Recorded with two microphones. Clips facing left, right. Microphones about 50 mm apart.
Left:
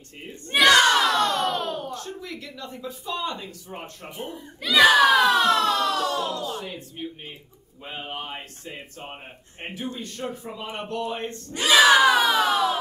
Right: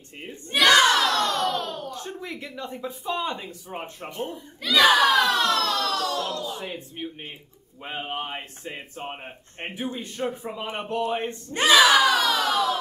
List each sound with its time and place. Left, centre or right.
0.7 s crowd: centre
0.9 s a sound: centre
2.0 s speech: right
4.1 s a child's voice: centre
6.6 s speech: centre
11.8 s a child's voice: centre